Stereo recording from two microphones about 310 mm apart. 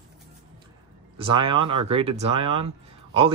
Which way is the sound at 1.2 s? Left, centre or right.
Centre.